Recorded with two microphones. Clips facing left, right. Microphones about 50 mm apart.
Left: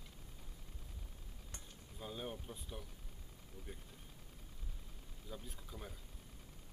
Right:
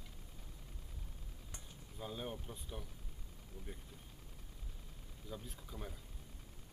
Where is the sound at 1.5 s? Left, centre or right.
Centre.